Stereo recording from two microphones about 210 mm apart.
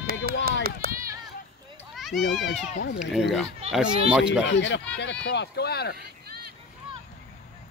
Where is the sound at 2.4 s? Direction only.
55° left (ahead or behind).